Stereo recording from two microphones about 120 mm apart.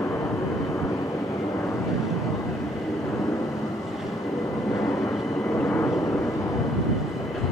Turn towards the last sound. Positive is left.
turn(degrees=15)  # may be behind; listen again after turning